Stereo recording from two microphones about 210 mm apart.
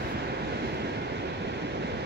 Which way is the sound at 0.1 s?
50° right (ahead or behind).